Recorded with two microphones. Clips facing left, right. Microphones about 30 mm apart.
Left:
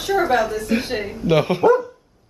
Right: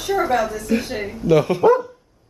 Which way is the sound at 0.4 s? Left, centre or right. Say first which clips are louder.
Left 1 dB; centre.